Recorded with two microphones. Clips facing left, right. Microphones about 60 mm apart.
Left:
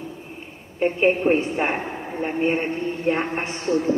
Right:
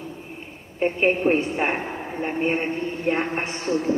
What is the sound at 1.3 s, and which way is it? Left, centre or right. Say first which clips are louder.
A man's voice: left 1 dB; centre.